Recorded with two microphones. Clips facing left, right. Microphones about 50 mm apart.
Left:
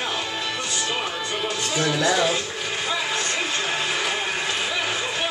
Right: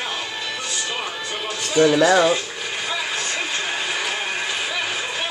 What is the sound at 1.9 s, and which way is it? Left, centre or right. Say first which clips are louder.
Speech: right 3 dB; right.